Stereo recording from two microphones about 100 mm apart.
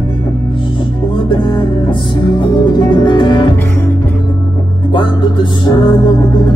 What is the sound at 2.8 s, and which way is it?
Music, 50° left (ahead or behind).